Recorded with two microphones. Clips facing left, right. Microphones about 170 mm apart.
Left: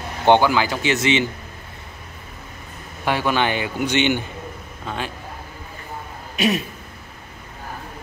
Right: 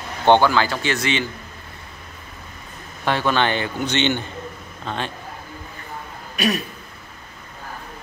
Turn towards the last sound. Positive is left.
turn(degrees=25)  # may be behind; listen again after turning